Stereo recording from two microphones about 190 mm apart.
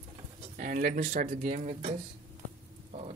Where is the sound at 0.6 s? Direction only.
45° right (ahead or behind).